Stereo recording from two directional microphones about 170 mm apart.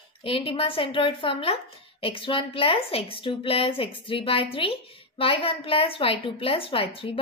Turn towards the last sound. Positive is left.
turn(degrees=30)  # may be behind; listen again after turning